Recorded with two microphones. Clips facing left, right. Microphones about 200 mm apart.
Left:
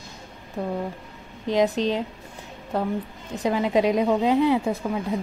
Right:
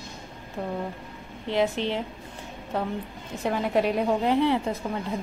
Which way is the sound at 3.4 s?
10° left (ahead or behind).